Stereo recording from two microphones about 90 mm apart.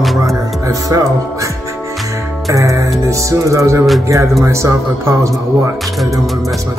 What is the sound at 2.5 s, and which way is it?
Speech, 40° right (ahead or behind).